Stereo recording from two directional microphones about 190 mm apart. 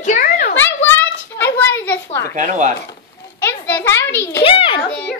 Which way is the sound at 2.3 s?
40° right (ahead or behind).